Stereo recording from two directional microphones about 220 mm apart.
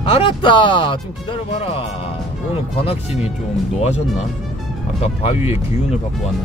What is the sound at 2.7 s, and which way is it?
Speech, 25° left (ahead or behind).